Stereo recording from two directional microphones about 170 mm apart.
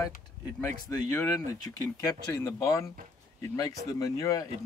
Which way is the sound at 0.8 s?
20° left (ahead or behind).